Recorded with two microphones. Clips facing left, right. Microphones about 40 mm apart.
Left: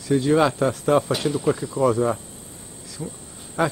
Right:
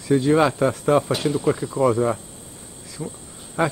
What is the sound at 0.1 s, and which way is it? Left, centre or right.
Speech, centre.